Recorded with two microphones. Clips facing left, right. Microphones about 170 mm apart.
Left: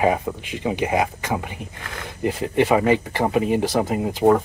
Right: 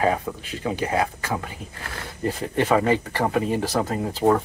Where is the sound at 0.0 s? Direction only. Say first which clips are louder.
Left 2 dB; 15° left (ahead or behind).